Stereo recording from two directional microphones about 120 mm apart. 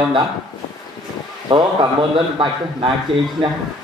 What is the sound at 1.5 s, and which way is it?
A man's voice, 45° right (ahead or behind).